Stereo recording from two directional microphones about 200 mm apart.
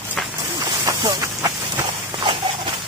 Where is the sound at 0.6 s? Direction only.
15° right (ahead or behind).